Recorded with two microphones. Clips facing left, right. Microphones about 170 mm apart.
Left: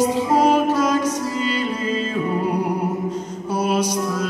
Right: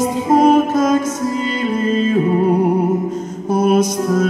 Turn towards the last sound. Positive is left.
turn(degrees=-50)  # may be behind; listen again after turning